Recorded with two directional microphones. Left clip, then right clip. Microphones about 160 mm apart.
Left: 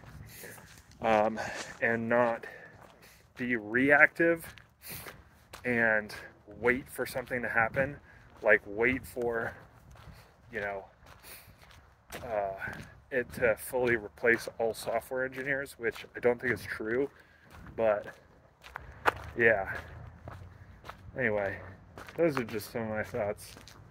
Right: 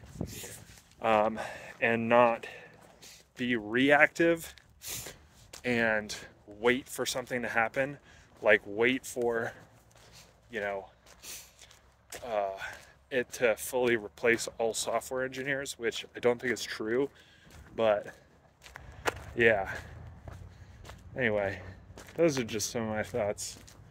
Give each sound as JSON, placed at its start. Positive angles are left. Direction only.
{"t": 0.9, "sound": "speech", "side_deg": 0}
{"t": 1.8, "sound": "speech", "side_deg": -25}
{"t": 12.3, "sound": "speech", "side_deg": -35}
{"t": 14.1, "sound": "speech", "side_deg": -20}
{"t": 15.0, "sound": "speech", "side_deg": -35}
{"t": 18.6, "sound": "a sound", "side_deg": -20}
{"t": 19.3, "sound": "speech", "side_deg": -35}
{"t": 20.3, "sound": "walk", "side_deg": -15}
{"t": 21.1, "sound": "speech", "side_deg": -35}